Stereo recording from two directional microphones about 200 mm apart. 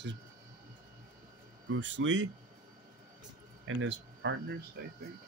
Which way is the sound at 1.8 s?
65° right (ahead or behind).